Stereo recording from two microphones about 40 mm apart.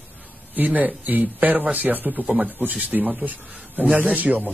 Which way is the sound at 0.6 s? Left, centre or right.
Right.